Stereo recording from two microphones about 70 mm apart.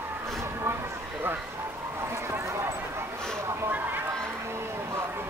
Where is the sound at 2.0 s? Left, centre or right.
Right.